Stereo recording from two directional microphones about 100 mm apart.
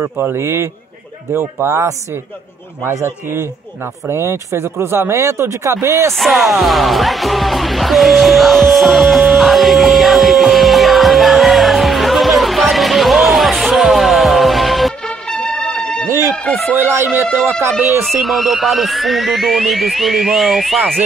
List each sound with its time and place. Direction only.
0.0 s speech: 25° right (ahead or behind)
6.1 s speech: centre (ahead or behind)
15.3 s music: 5° left (ahead or behind)
16.7 s speech: 25° right (ahead or behind)
18.1 s speech: centre (ahead or behind)